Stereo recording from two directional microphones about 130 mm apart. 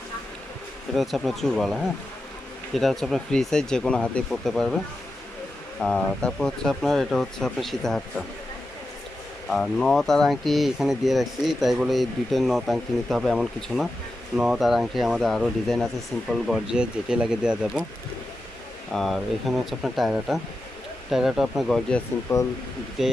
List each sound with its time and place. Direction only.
0.9 s speech: centre (ahead or behind)
5.8 s speech: 5° left (ahead or behind)
9.5 s speech: centre (ahead or behind)
18.9 s speech: centre (ahead or behind)
22.3 s speech: 20° left (ahead or behind)
23.0 s speech: 5° right (ahead or behind)